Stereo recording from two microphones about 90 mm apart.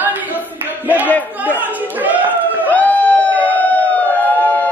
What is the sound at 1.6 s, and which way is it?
Chatter, 20° right (ahead or behind).